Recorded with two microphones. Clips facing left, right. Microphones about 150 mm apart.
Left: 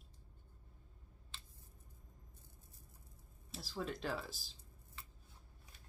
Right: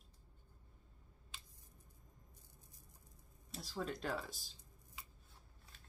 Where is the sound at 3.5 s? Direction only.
Centre (ahead or behind).